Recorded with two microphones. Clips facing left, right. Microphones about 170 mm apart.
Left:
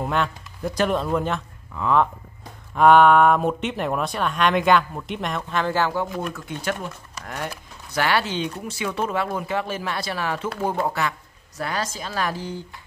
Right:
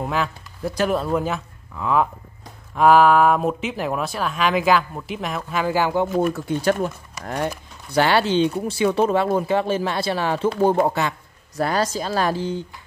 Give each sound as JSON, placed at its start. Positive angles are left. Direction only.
{"t": 0.0, "sound": "speech", "side_deg": 0}
{"t": 2.8, "sound": "speech", "side_deg": 0}
{"t": 6.3, "sound": "speech", "side_deg": -35}
{"t": 11.6, "sound": "speech", "side_deg": -35}